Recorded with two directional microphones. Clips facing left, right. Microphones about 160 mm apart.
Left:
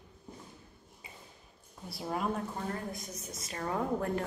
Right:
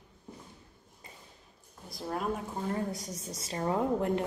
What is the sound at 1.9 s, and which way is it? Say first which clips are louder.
Speech: even; 5° left (ahead or behind).